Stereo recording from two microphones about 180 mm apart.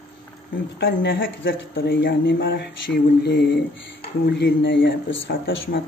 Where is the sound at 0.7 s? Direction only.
65° left (ahead or behind).